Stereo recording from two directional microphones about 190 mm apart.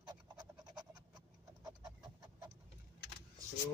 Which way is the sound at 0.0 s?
20° right (ahead or behind).